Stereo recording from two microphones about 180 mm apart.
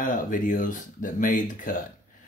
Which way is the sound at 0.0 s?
50° left (ahead or behind).